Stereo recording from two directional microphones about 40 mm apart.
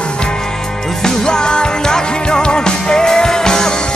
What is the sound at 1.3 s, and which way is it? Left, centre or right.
Music, left.